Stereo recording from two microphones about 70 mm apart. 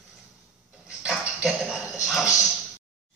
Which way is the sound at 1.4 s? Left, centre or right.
Centre.